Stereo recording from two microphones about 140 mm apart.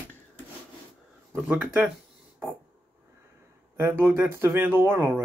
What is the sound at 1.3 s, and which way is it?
Speech, 5° right (ahead or behind).